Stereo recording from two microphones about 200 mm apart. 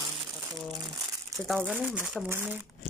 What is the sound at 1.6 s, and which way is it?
Speech, 5° right (ahead or behind).